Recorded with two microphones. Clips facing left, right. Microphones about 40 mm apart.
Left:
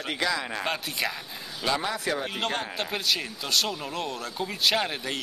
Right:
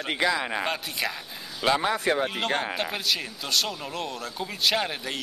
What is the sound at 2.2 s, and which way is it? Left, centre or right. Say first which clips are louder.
Speech: right 3 dB; centre.